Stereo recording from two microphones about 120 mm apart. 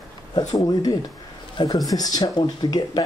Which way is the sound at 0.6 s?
35° left (ahead or behind).